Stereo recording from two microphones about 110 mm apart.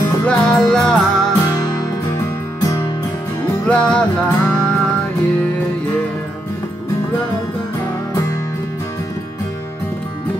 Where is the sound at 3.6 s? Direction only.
10° left (ahead or behind).